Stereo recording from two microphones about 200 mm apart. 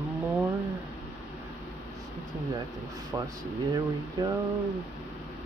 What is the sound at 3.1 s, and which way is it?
Speech, 15° right (ahead or behind).